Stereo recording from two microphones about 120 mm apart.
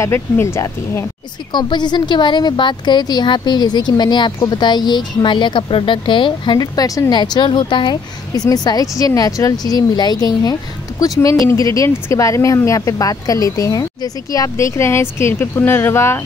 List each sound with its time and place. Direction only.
0.0 s speech: 20° left (ahead or behind)
1.5 s a woman's voice: 35° left (ahead or behind); by 16.2 s 20° left (ahead or behind)